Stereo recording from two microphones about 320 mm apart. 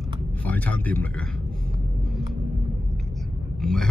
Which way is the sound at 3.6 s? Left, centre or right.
Centre.